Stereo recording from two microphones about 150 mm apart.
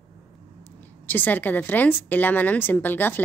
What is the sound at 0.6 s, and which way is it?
Speech, 10° left (ahead or behind).